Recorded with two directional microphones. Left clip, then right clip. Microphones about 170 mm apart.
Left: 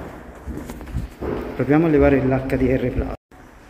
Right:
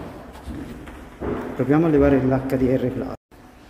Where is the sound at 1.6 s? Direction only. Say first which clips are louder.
Left 1 dB; 5° right (ahead or behind).